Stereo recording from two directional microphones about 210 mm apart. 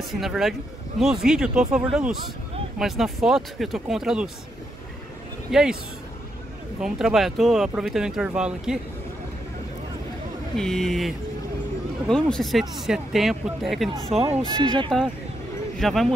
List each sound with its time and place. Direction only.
0.0 s speech: centre (ahead or behind)
5.5 s speech: centre (ahead or behind)
6.8 s speech: centre (ahead or behind)
10.5 s speech: centre (ahead or behind)
14.5 s speech: 20° right (ahead or behind)
15.8 s speech: centre (ahead or behind)